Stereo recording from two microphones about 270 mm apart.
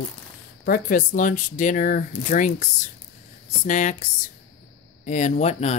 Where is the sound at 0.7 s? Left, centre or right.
Left.